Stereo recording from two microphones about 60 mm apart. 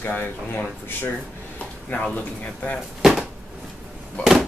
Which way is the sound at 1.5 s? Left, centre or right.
Left.